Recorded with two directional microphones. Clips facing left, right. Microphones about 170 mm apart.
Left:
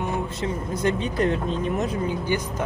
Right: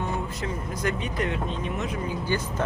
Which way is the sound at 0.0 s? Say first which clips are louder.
Left 3 dB; 25° left (ahead or behind).